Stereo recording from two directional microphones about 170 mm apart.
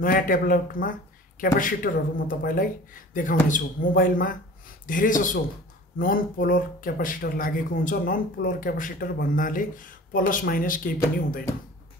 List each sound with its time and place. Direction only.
0.0 s speech: 55° left (ahead or behind)